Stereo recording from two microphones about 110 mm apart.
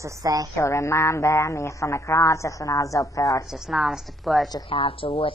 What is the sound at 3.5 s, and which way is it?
A woman's voice, centre (ahead or behind).